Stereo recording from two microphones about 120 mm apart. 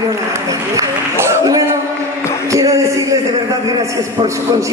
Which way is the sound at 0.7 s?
20° right (ahead or behind).